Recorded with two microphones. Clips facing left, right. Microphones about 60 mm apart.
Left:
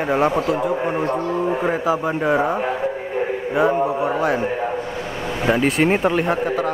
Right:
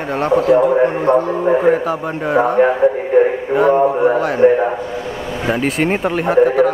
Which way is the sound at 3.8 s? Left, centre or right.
Centre.